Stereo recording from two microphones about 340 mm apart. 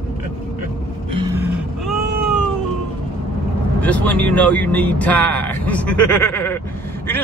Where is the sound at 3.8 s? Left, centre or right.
Centre.